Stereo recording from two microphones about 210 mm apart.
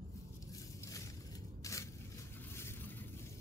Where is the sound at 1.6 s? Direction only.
15° left (ahead or behind).